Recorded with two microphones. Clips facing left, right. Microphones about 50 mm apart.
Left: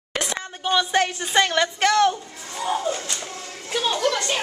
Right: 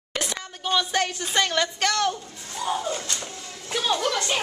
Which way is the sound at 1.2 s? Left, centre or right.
Centre.